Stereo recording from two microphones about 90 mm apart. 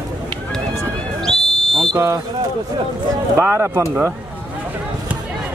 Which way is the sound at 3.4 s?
30° right (ahead or behind).